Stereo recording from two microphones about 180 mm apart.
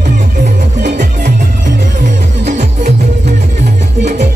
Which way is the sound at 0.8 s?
45° right (ahead or behind).